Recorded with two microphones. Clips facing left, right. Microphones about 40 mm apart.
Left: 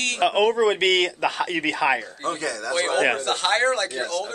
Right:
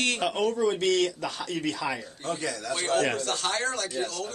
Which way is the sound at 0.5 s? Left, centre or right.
Left.